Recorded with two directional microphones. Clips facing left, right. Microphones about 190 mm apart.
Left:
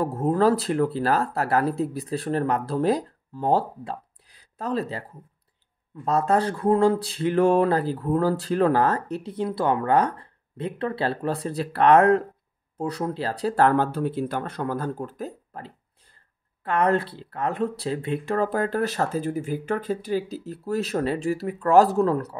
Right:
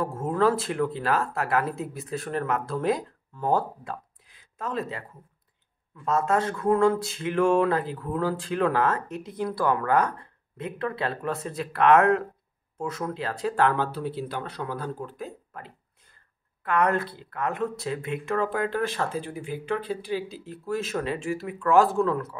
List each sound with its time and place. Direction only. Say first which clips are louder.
0.0 s speech: left 3 dB; 35° left (ahead or behind)
6.0 s speech: left 3 dB; 35° left (ahead or behind)